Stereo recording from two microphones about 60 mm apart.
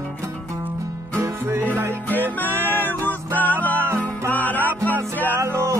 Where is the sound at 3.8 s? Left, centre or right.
Right.